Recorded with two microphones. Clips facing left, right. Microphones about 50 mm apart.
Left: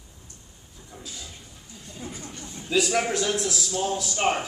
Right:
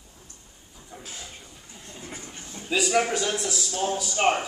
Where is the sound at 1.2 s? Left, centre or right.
Right.